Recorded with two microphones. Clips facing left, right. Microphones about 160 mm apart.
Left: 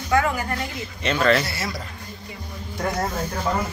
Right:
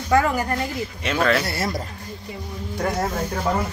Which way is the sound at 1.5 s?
50° right (ahead or behind).